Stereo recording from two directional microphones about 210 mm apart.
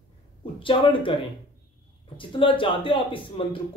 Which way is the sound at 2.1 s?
25° left (ahead or behind).